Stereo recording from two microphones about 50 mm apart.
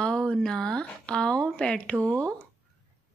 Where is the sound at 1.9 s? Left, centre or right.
Right.